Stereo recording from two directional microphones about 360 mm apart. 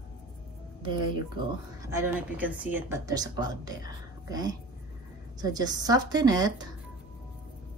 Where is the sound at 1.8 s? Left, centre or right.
Centre.